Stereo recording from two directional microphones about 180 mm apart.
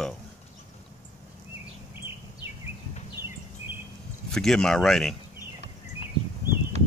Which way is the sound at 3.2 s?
55° right (ahead or behind).